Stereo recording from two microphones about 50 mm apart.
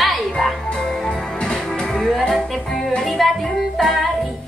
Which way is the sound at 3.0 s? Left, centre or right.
Centre.